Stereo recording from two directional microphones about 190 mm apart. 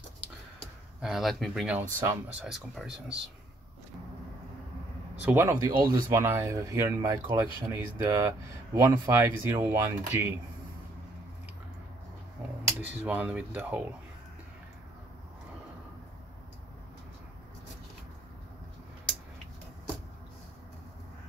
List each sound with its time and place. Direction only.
1.0 s speech: centre (ahead or behind)
5.2 s speech: 15° right (ahead or behind)
12.8 s speech: 10° right (ahead or behind)